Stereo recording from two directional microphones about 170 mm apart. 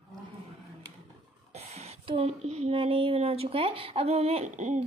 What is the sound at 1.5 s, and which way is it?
Speech, 40° right (ahead or behind).